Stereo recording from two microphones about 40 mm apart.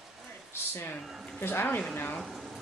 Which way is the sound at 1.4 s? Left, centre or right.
Left.